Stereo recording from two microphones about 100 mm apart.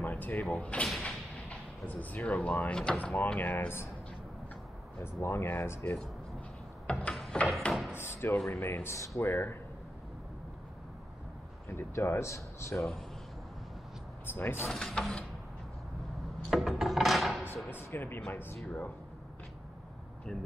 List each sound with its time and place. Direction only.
0.0 s speech: 20° left (ahead or behind)
0.8 s a sound: centre (ahead or behind)
1.5 s speech: 15° left (ahead or behind)
5.0 s speech: 25° left (ahead or behind)
6.9 s a sound: 10° left (ahead or behind)
7.9 s speech: 25° left (ahead or behind)
11.7 s speech: 25° left (ahead or behind)
12.7 s speech: centre (ahead or behind)
14.3 s speech: 25° left (ahead or behind)
14.7 s speech: 5° left (ahead or behind)
16.4 s a sound: centre (ahead or behind)
17.6 s speech: 20° left (ahead or behind)